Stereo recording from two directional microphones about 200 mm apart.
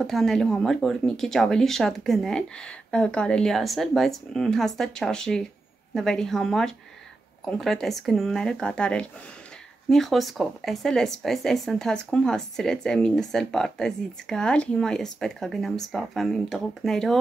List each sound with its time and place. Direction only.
0.0 s speech: centre (ahead or behind)